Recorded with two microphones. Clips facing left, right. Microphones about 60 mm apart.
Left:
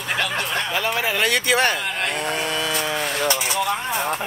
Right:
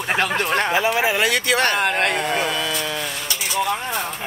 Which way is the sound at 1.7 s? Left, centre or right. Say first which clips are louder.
Right 6 dB; right.